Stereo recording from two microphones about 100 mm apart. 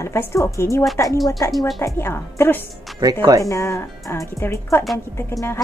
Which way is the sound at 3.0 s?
40° right (ahead or behind).